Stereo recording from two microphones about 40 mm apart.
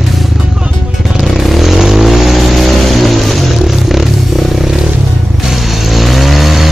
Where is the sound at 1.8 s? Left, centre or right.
Centre.